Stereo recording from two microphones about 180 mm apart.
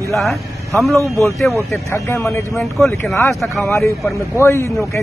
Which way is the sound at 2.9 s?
15° left (ahead or behind).